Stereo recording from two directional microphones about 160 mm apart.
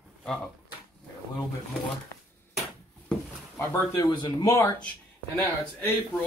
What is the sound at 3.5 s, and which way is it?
Speech, 20° left (ahead or behind).